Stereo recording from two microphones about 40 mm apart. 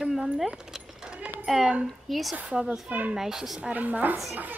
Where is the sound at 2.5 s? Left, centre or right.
Centre.